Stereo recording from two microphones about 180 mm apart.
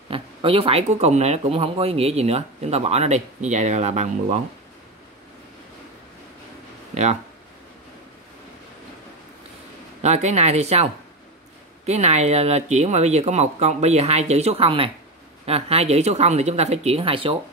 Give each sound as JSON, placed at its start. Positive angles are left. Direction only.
{"t": 0.1, "sound": "speech", "side_deg": -30}
{"t": 6.9, "sound": "speech", "side_deg": -40}
{"t": 10.0, "sound": "speech", "side_deg": -40}